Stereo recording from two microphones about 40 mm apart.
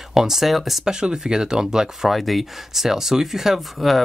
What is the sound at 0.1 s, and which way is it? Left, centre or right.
Speech, centre.